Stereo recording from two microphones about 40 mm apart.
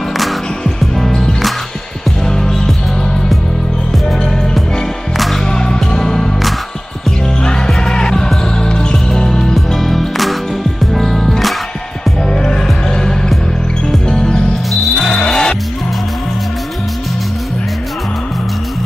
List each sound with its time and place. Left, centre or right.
0.7 s music: centre
5.1 s music: centre
5.5 s music: centre
7.4 s music: centre
12.3 s music: centre
14.0 s music: centre